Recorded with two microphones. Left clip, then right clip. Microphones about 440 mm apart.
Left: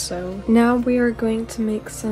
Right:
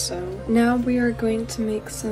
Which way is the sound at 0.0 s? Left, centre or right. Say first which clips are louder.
Left 1 dB; left.